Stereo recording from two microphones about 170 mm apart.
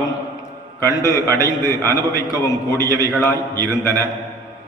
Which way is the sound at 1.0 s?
15° left (ahead or behind).